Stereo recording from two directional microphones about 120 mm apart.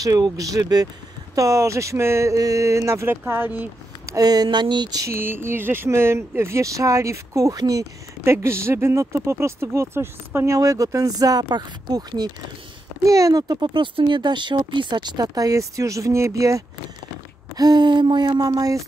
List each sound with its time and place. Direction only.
0.0 s speech: 30° right (ahead or behind)
4.1 s speech: 35° right (ahead or behind)
5.1 s speech: 20° right (ahead or behind)